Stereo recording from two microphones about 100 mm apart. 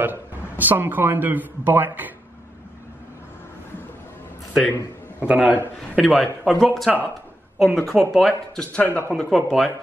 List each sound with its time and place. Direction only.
0.0 s a man's voice: 20° right (ahead or behind)
5.2 s a man's voice: 15° right (ahead or behind)
5.9 s a man's voice: 5° left (ahead or behind)
8.8 s speech: 20° left (ahead or behind)
9.3 s speech: centre (ahead or behind)